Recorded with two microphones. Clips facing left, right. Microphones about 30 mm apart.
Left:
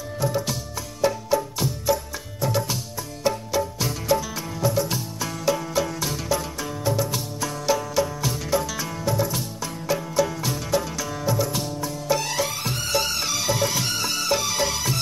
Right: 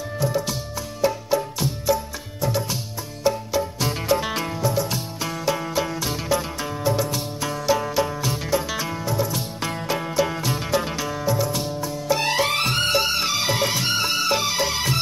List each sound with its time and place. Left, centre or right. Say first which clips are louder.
3.8 s music: right 3 dB; right
4.2 s music: right 6 dB; right
5.2 s music: even; centre
8.6 s music: right 3 dB; right
9.6 s music: right 1 dB; right
11.1 s music: right 2 dB; centre
12.2 s music: right 4 dB; right
12.4 s music: right 7 dB; right
12.9 s music: right 3 dB; right